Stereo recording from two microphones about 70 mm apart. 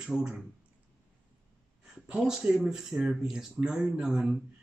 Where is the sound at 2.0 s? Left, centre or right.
Centre.